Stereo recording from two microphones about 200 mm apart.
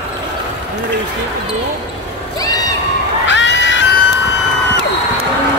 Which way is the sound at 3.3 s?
65° left (ahead or behind).